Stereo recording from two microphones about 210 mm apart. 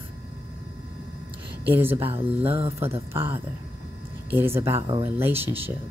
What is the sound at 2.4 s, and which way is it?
Speech, 30° right (ahead or behind).